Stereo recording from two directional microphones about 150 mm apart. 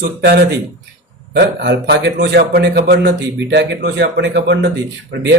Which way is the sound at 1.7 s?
90° right.